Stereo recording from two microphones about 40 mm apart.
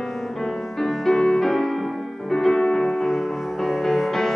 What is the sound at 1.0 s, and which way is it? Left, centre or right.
Music, centre.